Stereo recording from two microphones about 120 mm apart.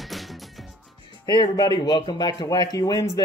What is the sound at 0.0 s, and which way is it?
Music, centre (ahead or behind).